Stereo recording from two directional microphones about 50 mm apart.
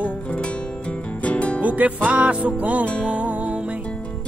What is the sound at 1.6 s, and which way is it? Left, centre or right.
Music, right.